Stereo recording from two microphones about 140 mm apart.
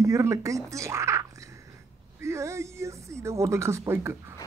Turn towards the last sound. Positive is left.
turn(degrees=-15)  # may be behind; listen again after turning